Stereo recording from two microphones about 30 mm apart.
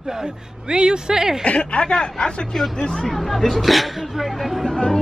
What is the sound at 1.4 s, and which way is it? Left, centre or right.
Speech, left.